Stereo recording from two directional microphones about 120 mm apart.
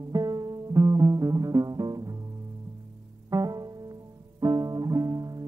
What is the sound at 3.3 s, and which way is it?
Music, 30° right (ahead or behind).